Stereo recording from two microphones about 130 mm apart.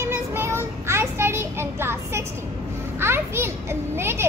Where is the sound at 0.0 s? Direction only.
20° right (ahead or behind).